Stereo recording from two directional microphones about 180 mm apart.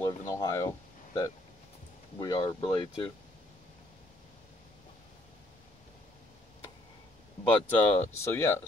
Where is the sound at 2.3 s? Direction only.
30° left (ahead or behind).